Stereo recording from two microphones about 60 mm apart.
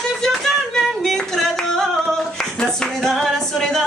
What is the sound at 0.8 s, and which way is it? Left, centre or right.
Singing, centre.